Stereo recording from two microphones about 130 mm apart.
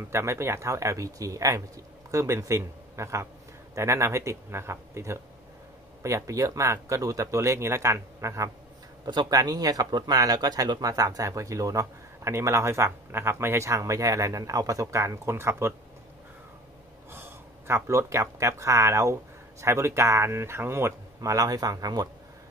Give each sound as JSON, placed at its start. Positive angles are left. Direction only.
{"t": 0.1, "sound": "speech", "side_deg": -20}
{"t": 9.0, "sound": "speech", "side_deg": -35}
{"t": 17.1, "sound": "speech", "side_deg": -20}